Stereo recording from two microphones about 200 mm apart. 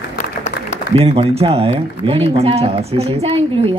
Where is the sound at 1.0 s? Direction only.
30° right (ahead or behind).